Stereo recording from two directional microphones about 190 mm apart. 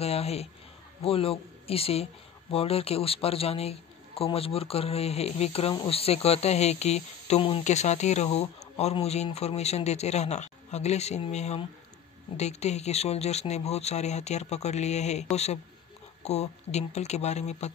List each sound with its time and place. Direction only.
0.0 s a man's voice: 30° left (ahead or behind)